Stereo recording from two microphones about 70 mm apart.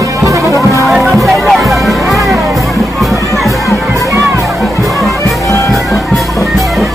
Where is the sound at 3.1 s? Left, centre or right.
Right.